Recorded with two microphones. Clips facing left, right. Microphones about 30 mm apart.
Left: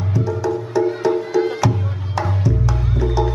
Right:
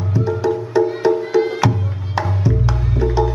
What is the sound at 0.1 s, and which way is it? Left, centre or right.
Music, right.